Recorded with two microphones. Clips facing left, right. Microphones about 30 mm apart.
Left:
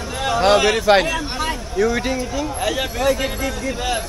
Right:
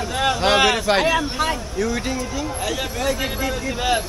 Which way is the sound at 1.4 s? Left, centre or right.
Centre.